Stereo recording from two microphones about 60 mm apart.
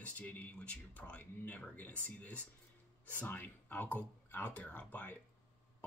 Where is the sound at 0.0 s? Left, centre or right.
Left.